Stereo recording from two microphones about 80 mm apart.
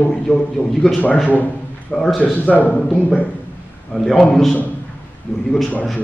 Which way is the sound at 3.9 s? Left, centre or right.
Centre.